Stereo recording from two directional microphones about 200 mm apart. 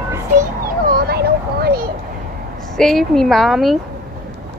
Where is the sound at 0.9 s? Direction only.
50° right (ahead or behind).